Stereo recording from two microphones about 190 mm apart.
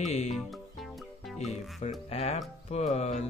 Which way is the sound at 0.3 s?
Centre (ahead or behind).